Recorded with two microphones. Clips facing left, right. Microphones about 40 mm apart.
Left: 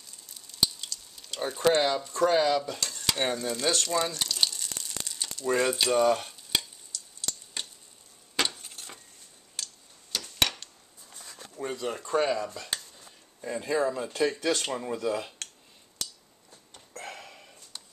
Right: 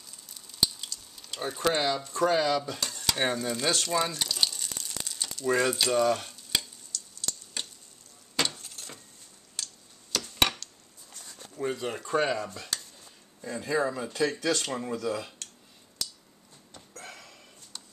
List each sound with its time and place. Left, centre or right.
0.3 s a sound: centre
1.1 s speech: centre
2.3 s stir: centre
3.1 s a sound: centre
8.5 s keys jangling: left
9.6 s tick-tock: centre
10.4 s a sound: centre
11.5 s speech: centre
12.7 s a sound: left
13.4 s speech: centre
14.7 s speech: centre
15.0 s speech: left
16.7 s hiccup: left